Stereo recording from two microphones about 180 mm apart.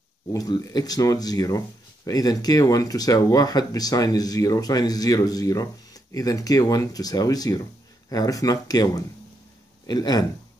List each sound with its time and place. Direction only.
0.3 s speech: 20° left (ahead or behind)